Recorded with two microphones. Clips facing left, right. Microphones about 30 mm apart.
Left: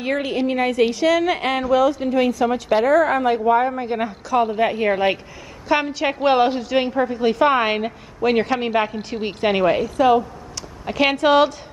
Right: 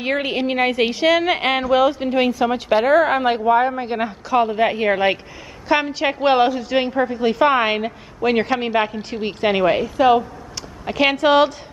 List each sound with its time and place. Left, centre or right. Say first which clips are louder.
0.0 s a woman's voice: right 1 dB; right
3.4 s a woman's voice: right 1 dB; centre
9.7 s a woman's voice: right 1 dB; centre
10.9 s a woman's voice: right 1 dB; centre